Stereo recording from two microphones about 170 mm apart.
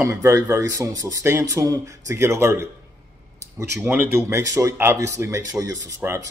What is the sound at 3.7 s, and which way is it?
Speech, 15° right (ahead or behind).